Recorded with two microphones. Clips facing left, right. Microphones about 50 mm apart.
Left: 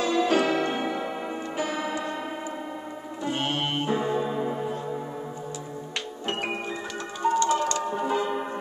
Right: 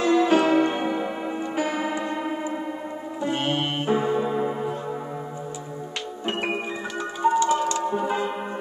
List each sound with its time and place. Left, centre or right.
0.1 s music: centre
1.6 s church bell: centre
3.3 s music: centre
7.2 s music: centre